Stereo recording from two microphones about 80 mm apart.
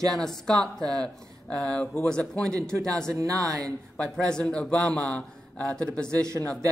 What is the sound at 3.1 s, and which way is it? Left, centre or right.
Speech, right.